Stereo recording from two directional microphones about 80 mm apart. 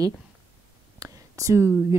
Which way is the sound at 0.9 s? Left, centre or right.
Right.